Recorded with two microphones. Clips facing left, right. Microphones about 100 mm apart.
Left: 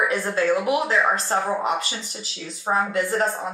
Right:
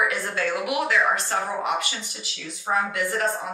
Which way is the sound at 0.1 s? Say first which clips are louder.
Left 5 dB; 30° left (ahead or behind).